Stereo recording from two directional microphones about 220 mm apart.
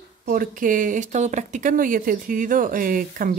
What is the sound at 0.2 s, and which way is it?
Speech, 40° right (ahead or behind).